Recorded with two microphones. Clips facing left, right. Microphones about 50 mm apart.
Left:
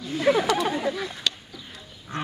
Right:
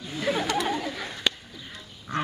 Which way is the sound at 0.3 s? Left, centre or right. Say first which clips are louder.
Left 7 dB; left.